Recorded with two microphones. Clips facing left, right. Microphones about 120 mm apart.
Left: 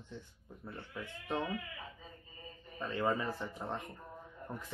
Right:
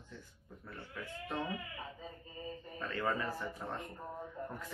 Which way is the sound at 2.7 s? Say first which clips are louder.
Left 3 dB; 20° left (ahead or behind).